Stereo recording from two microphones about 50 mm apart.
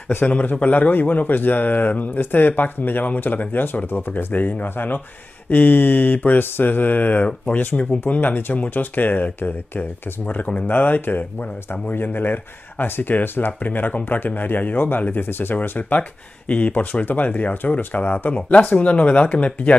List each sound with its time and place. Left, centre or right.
0.3 s a man's voice: left
15.9 s a man's voice: left